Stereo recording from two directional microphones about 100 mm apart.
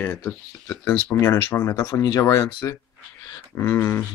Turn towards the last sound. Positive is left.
turn(degrees=25)  # may be behind; listen again after turning